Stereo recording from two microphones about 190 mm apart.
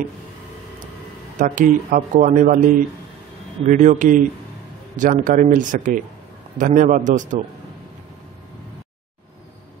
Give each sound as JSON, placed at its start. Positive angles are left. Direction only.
{"t": 1.4, "sound": "speech", "side_deg": -45}
{"t": 3.6, "sound": "speech", "side_deg": -40}